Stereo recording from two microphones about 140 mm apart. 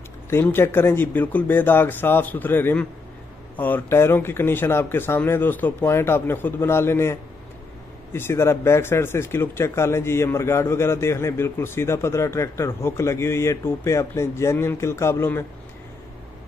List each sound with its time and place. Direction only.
0.3 s speech: 15° left (ahead or behind)